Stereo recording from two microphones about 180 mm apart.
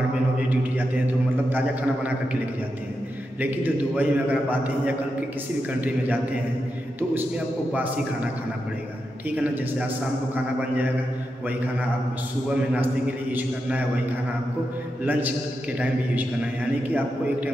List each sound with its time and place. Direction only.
0.5 s a man's voice: 10° right (ahead or behind)
3.3 s a man's voice: 10° right (ahead or behind)
9.3 s a man's voice: 10° right (ahead or behind)
12.7 s a man's voice: 10° right (ahead or behind)
15.0 s a man's voice: 10° right (ahead or behind)
16.8 s a man's voice: 10° right (ahead or behind)